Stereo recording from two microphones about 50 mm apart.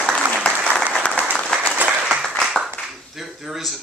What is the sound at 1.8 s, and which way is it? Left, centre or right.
Applause, right.